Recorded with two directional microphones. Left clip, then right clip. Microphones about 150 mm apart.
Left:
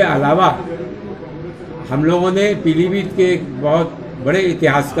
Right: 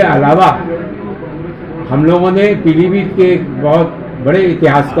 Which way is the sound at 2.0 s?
15° left (ahead or behind).